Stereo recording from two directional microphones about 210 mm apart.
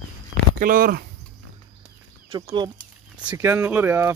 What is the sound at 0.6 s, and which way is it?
Speech, 40° right (ahead or behind).